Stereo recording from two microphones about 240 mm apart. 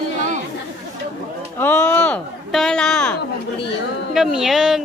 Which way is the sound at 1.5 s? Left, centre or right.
Centre.